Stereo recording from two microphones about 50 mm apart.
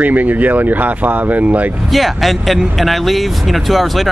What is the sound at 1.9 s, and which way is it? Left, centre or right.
Speech, centre.